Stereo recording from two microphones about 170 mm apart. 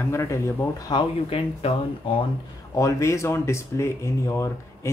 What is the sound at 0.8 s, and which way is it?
Speech, 30° left (ahead or behind).